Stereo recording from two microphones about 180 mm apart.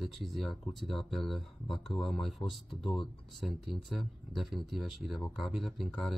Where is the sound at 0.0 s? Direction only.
Centre (ahead or behind).